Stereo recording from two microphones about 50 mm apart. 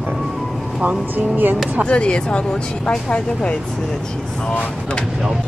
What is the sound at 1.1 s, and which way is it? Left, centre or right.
Speech, right.